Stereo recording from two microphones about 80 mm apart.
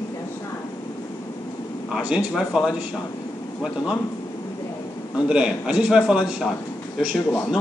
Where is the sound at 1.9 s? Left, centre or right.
Centre.